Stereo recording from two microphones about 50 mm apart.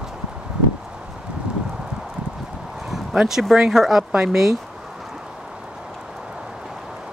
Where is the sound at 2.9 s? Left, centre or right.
Centre.